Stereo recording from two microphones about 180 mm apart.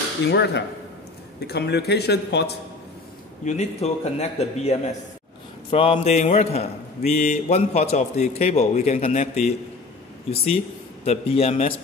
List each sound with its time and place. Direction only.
0.3 s speech: 70° left (ahead or behind)
3.4 s a man's voice: 40° left (ahead or behind)